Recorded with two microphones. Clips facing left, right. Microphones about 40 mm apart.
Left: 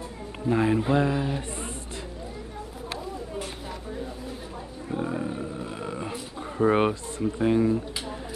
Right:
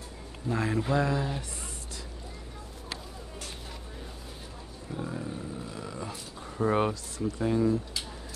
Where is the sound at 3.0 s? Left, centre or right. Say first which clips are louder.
Left 9 dB; left.